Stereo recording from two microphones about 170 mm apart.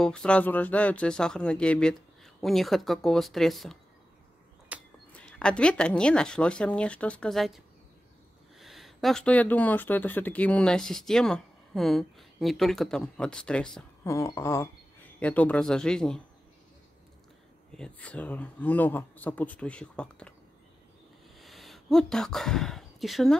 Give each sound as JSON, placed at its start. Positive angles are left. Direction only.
{"t": 0.0, "sound": "speech", "side_deg": 5}
{"t": 4.7, "sound": "a sound", "side_deg": -10}
{"t": 5.1, "sound": "speech", "side_deg": 5}
{"t": 14.0, "sound": "speech", "side_deg": 20}
{"t": 17.7, "sound": "speech", "side_deg": 5}
{"t": 21.4, "sound": "speech", "side_deg": 0}